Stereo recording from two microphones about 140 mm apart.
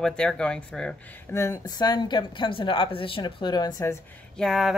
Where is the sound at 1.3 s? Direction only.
20° left (ahead or behind).